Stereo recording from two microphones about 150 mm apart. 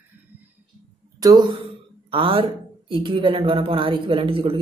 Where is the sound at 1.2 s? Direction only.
30° right (ahead or behind).